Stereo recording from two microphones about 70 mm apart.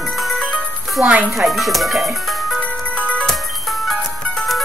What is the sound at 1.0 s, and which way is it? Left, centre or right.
Speech, centre.